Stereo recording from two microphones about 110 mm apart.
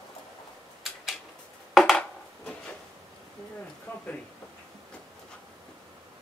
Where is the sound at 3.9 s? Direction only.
15° left (ahead or behind).